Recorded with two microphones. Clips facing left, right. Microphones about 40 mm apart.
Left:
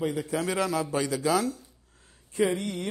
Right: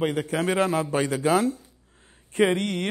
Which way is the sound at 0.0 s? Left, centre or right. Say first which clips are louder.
Right 4 dB; right.